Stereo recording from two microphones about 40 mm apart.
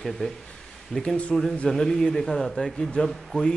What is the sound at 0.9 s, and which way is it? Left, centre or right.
Speech, left.